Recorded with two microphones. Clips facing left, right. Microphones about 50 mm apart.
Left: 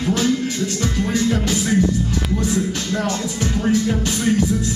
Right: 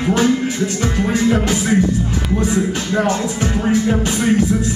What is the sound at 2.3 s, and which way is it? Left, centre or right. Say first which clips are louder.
Speech: right 5 dB; right.